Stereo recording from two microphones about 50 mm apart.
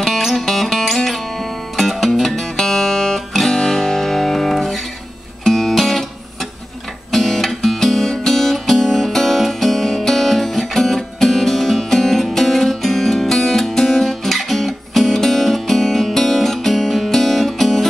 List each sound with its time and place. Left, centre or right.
0.0 s music: centre
7.1 s music: centre